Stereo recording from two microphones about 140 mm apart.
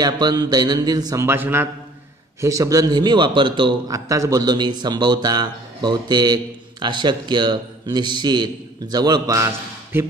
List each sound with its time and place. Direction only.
0.0 s speech: 30° right (ahead or behind)
3.9 s a man's voice: 25° right (ahead or behind)